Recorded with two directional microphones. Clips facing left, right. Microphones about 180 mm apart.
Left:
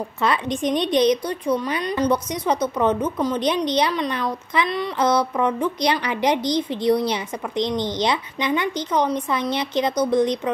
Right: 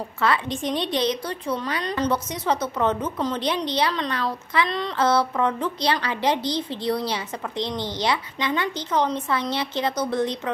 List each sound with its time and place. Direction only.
0.2 s a woman's voice: 20° left (ahead or behind)